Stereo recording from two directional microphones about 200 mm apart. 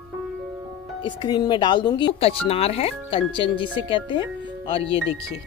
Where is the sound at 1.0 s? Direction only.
20° left (ahead or behind).